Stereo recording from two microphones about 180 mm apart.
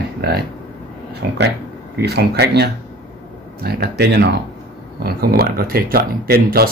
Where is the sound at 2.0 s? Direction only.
65° right (ahead or behind).